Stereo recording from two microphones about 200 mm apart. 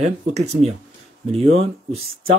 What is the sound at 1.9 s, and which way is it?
Speech, 30° right (ahead or behind).